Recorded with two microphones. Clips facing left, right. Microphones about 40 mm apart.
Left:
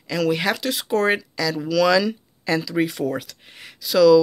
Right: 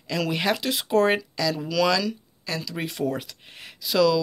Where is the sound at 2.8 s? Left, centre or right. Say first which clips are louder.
Left 5 dB; centre.